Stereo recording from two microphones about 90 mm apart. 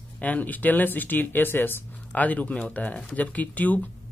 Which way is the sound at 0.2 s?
15° left (ahead or behind).